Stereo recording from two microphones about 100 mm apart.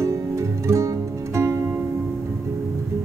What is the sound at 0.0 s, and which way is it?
Music, 30° right (ahead or behind).